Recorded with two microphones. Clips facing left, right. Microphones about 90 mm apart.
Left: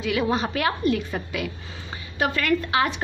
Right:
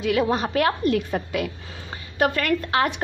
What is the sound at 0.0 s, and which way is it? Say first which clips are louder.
A woman's voice: right 2 dB; 45° right (ahead or behind).